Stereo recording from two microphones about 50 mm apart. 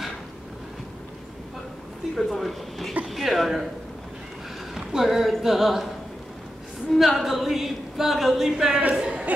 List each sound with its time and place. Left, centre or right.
2.1 s a woman's voice: centre
4.7 s a woman's voice: centre
6.9 s a woman's voice: centre
8.9 s speech: centre